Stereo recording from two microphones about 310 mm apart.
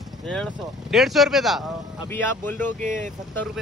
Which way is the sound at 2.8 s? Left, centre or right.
Right.